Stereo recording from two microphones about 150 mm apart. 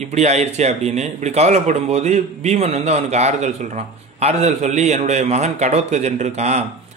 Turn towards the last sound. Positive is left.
turn(degrees=-50)  # may be behind; listen again after turning